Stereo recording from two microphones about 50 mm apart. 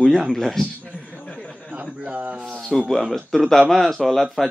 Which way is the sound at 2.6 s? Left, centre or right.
Centre.